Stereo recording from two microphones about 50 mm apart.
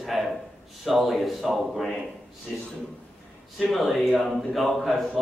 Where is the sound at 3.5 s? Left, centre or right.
Centre.